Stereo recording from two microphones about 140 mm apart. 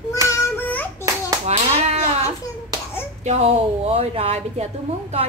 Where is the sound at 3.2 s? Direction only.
50° right (ahead or behind).